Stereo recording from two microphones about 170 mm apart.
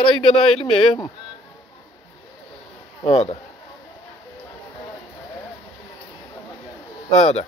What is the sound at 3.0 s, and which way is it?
Speech, 35° left (ahead or behind).